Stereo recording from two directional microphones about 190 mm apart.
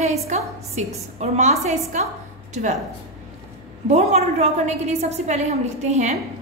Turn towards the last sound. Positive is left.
turn(degrees=-35)  # may be behind; listen again after turning